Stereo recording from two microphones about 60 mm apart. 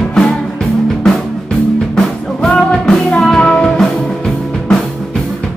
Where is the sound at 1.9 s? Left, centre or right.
Centre.